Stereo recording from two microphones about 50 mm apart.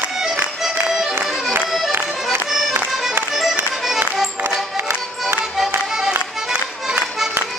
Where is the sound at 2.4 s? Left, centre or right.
Centre.